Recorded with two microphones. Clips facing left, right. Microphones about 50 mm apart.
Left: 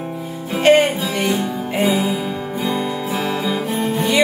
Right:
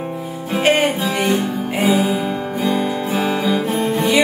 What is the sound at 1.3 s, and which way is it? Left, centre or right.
Music, right.